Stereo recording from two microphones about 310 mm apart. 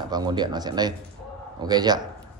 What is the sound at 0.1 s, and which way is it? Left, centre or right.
A man's voice, centre.